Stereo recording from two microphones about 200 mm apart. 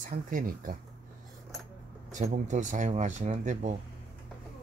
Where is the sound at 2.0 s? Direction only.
40° right (ahead or behind).